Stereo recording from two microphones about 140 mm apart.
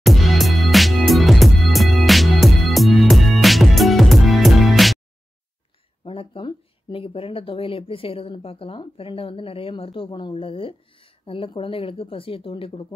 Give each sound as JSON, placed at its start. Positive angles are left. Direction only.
{"t": 0.0, "sound": "music", "side_deg": 0}
{"t": 6.0, "sound": "speech", "side_deg": 40}